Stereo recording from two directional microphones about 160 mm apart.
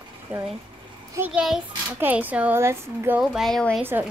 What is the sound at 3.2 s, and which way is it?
Speech, centre (ahead or behind).